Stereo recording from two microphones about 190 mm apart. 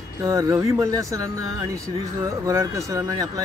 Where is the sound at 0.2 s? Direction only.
15° right (ahead or behind).